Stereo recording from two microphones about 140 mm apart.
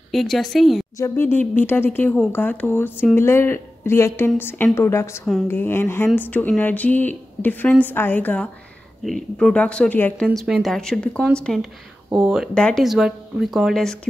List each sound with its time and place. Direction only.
0.1 s speech: centre (ahead or behind)
0.9 s a woman's voice: 20° left (ahead or behind)
10.2 s speech: 5° right (ahead or behind)